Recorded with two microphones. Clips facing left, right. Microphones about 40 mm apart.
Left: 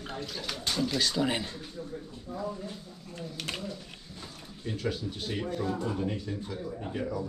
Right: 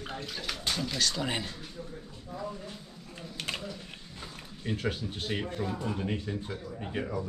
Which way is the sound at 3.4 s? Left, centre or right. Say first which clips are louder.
Right 2 dB; centre.